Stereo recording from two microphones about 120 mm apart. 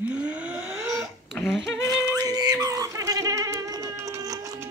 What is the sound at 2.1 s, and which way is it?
Goat, 30° right (ahead or behind).